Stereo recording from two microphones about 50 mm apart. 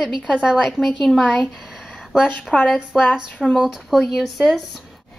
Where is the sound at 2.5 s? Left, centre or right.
Left.